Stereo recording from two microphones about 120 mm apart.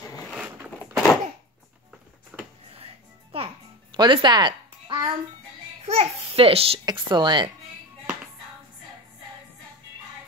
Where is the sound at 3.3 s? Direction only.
45° right (ahead or behind).